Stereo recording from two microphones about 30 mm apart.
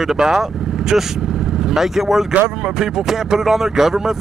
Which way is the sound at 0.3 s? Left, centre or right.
Centre.